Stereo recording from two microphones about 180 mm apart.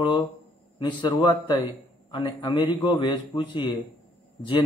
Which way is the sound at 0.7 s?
25° left (ahead or behind).